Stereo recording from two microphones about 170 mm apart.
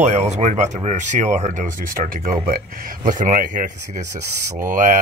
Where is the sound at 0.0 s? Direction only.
45° right (ahead or behind).